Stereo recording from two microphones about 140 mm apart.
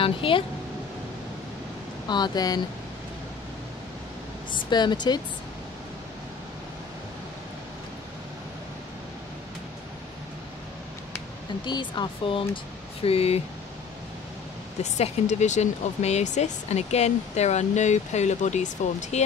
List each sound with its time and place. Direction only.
0.0 s speech: 40° left (ahead or behind)
2.0 s speech: 30° left (ahead or behind)
4.5 s speech: 30° left (ahead or behind)
11.6 s speech: 35° left (ahead or behind)
14.8 s speech: 50° left (ahead or behind)